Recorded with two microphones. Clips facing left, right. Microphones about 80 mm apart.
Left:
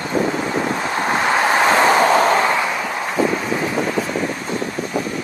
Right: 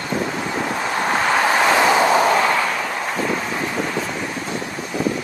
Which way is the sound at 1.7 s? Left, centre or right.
Left.